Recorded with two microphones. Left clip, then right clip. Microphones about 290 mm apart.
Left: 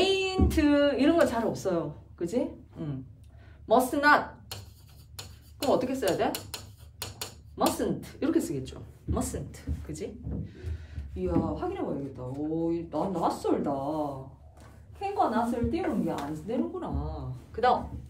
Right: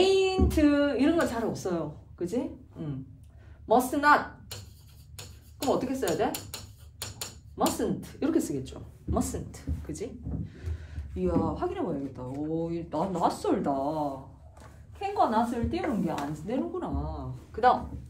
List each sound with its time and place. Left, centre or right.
0.0 s a woman's voice: centre
5.7 s a woman's voice: centre
7.5 s speech: centre; by 13.7 s right
15.0 s speech: right